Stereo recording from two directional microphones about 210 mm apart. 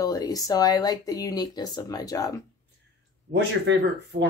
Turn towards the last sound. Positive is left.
turn(degrees=-55)  # may be behind; listen again after turning